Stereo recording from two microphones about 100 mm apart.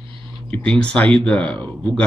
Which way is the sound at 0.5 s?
10° left (ahead or behind).